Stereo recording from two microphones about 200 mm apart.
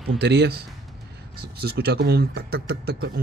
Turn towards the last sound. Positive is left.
turn(degrees=-50)  # may be behind; listen again after turning